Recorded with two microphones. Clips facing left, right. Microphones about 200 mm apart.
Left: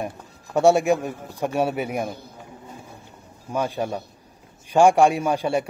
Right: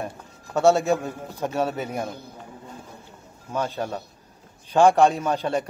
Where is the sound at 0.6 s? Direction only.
15° left (ahead or behind).